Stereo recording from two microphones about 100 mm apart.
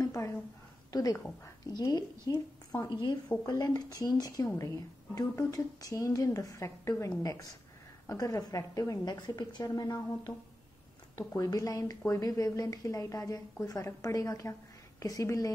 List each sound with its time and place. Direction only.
0.0 s a sound: 30° left (ahead or behind)
1.7 s a woman's voice: 45° left (ahead or behind)
9.0 s a woman's voice: 45° left (ahead or behind)